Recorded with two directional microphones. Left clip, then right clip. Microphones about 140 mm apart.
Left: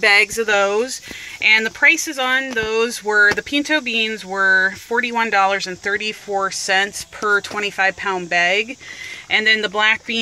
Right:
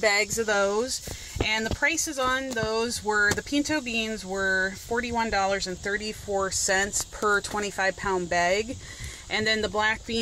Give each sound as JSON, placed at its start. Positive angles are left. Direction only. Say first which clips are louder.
{"t": 0.0, "sound": "speech", "louder": "left 9 dB", "side_deg": -40}
{"t": 1.9, "sound": "speech", "louder": "left 10 dB", "side_deg": -55}
{"t": 4.1, "sound": "speech", "louder": "left 10 dB", "side_deg": -45}
{"t": 4.5, "sound": "speech", "louder": "left 11 dB", "side_deg": -25}
{"t": 5.0, "sound": "speech", "louder": "left 10 dB", "side_deg": -50}
{"t": 6.6, "sound": "speech", "louder": "left 7 dB", "side_deg": -70}